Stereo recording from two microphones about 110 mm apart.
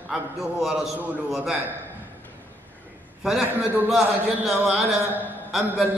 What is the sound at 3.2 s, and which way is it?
A man's voice, 5° right (ahead or behind).